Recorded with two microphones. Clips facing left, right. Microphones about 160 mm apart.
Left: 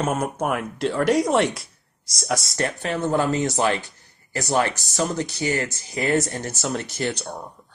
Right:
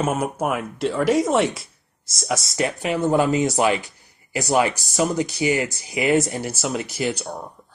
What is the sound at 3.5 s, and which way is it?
Speech, 10° right (ahead or behind).